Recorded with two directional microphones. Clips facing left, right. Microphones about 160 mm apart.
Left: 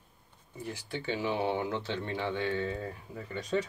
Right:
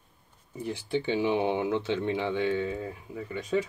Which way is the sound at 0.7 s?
20° right (ahead or behind).